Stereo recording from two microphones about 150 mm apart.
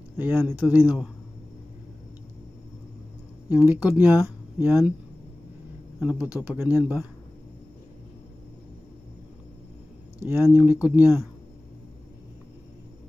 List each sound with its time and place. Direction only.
0.2 s speech: 10° right (ahead or behind)
3.4 s speech: 10° right (ahead or behind)
5.9 s a man's voice: 10° right (ahead or behind)
10.2 s speech: 15° right (ahead or behind)